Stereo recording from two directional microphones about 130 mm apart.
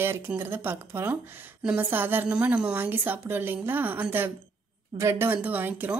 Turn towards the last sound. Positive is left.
turn(degrees=-10)  # may be behind; listen again after turning